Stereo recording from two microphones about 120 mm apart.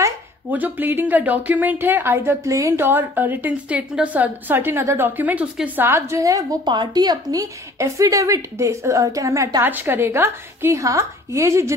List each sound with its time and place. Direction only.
0.5 s speech: 15° right (ahead or behind)
5.9 s a woman's voice: 20° right (ahead or behind)